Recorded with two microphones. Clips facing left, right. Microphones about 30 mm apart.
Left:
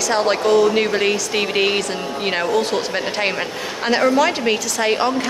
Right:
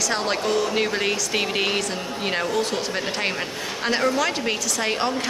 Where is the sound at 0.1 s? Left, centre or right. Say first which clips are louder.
Left 10 dB; centre.